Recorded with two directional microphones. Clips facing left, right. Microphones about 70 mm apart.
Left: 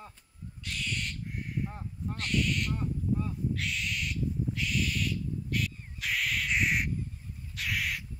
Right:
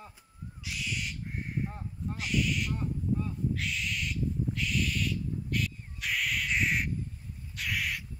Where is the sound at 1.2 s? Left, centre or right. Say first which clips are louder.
Even; right.